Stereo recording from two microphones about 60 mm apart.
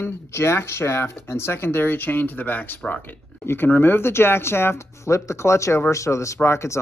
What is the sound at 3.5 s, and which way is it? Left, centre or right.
Speech, left.